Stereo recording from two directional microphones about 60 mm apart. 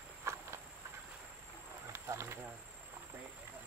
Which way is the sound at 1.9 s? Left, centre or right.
Right.